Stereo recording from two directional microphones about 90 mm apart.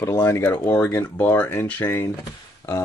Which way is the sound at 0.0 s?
35° left (ahead or behind).